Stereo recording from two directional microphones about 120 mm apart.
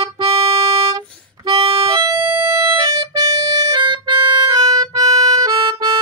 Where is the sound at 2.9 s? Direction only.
35° right (ahead or behind).